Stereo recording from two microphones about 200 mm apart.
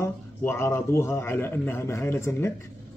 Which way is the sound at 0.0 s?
10° left (ahead or behind).